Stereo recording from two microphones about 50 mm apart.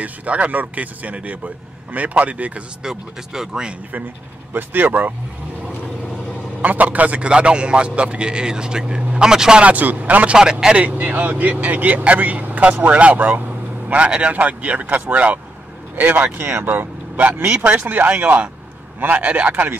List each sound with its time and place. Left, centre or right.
0.0 s a man's voice: right
2.8 s speech: centre
4.6 s speech: right
6.6 s a man's voice: right; by 9.6 s centre
9.6 s a man's voice: right
10.3 s speech: centre
10.8 s speech: right
13.9 s a man's voice: right
17.3 s speech: right